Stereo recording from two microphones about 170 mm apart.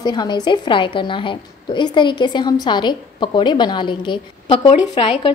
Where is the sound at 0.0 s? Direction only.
25° left (ahead or behind).